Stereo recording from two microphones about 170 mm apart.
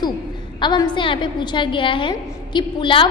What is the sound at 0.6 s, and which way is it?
A woman's voice, 25° left (ahead or behind).